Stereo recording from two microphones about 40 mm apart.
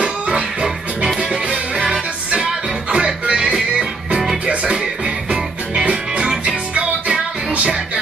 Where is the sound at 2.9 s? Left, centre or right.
Right.